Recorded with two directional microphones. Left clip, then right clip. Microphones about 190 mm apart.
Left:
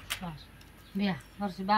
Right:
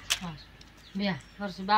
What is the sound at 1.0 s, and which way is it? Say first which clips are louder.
Speech: right 1 dB; 20° right (ahead or behind).